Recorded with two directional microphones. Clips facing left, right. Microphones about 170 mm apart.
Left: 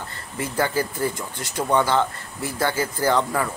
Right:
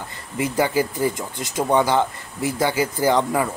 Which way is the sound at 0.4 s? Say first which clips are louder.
Right 3 dB; 15° right (ahead or behind).